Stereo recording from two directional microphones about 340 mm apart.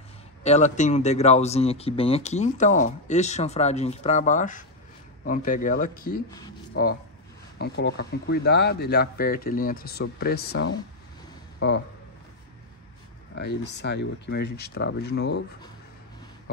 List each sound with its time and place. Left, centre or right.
0.4 s speech: centre
13.3 s speech: left